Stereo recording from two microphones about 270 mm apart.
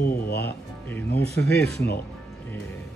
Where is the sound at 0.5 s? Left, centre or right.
Centre.